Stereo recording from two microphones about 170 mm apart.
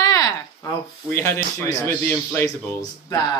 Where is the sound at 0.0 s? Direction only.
20° left (ahead or behind).